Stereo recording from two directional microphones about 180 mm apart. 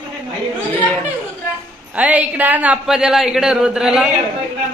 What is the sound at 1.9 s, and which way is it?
Speech, 10° right (ahead or behind).